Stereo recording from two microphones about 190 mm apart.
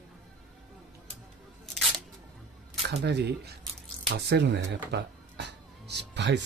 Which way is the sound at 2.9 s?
60° right (ahead or behind).